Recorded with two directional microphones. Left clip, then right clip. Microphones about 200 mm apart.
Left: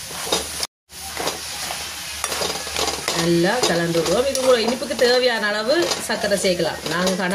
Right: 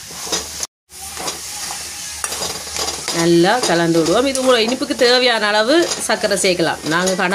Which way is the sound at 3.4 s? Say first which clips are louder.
Right 5 dB; 55° right (ahead or behind).